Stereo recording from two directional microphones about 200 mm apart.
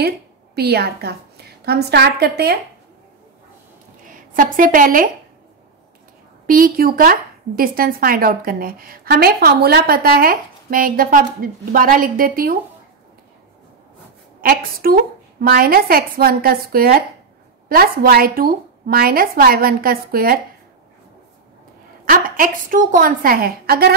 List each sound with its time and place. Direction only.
0.6 s speech: 50° right (ahead or behind)
4.1 s a woman's voice: 45° right (ahead or behind)
6.4 s speech: 45° right (ahead or behind)
14.4 s speech: 45° right (ahead or behind)
22.0 s speech: 45° right (ahead or behind)